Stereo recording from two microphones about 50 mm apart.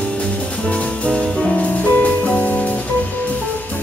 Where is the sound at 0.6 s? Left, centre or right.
Left.